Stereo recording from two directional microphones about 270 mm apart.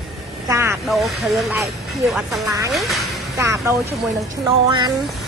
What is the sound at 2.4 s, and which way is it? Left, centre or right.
Speech, centre.